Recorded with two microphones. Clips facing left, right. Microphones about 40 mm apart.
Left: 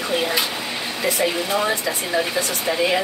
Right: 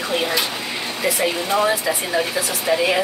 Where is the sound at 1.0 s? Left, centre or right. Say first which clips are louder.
Even; centre.